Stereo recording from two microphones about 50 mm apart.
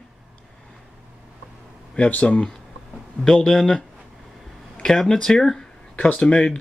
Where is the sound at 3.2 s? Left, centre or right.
Centre.